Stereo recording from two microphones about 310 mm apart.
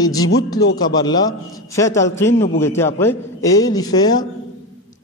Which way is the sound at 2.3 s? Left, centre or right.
Left.